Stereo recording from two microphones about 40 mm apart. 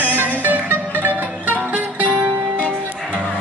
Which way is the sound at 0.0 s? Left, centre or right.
Right.